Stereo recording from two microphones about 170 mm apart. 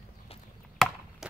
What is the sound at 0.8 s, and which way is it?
Chop, centre (ahead or behind).